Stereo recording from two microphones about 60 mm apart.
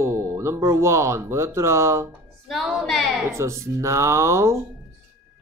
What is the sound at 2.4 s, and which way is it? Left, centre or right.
Speech, centre.